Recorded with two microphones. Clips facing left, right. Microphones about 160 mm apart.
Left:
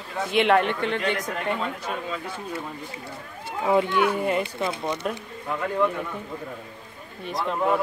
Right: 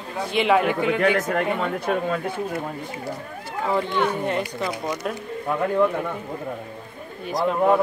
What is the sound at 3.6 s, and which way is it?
Speech, 10° left (ahead or behind).